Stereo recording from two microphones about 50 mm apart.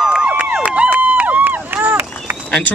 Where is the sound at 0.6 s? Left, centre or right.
Right.